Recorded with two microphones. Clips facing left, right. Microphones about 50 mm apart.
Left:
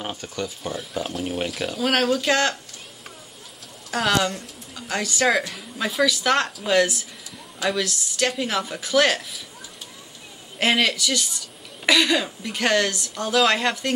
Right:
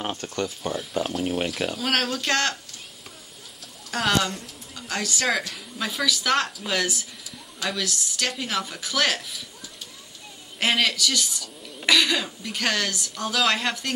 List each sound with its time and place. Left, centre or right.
0.1 s speech: centre
3.9 s speech: centre
10.6 s speech: centre